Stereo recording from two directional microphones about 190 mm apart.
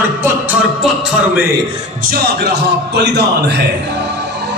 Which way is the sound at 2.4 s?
60° right (ahead or behind).